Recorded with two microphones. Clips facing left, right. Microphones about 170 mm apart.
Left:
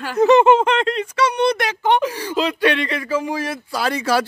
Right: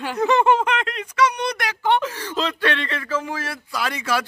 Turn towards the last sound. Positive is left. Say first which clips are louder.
# left 5 dB
turn(degrees=35)  # may be behind; listen again after turning